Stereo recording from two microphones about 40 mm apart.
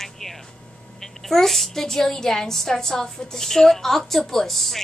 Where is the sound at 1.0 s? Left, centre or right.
Centre.